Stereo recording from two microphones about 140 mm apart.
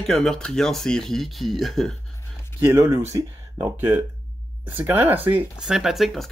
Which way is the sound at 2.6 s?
20° right (ahead or behind).